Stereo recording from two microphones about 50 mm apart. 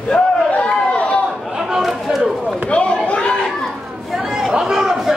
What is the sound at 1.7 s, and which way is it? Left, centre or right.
Chatter, centre.